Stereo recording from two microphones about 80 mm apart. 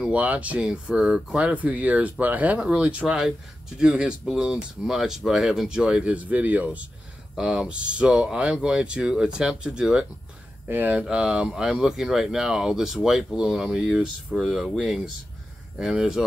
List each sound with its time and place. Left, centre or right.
0.0 s speech: centre
15.8 s speech: centre